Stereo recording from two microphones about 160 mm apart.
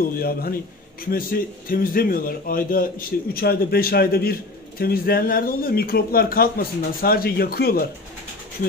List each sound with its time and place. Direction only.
0.0 s a man's voice: 65° left (ahead or behind)